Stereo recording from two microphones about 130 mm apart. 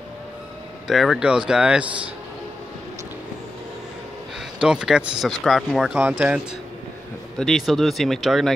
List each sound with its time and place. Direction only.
0.8 s speech: centre (ahead or behind)
4.6 s speech: 5° right (ahead or behind)
5.9 s speech: 15° right (ahead or behind)
7.3 s speech: centre (ahead or behind)